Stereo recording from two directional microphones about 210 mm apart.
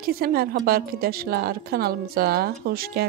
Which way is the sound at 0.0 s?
45° right (ahead or behind).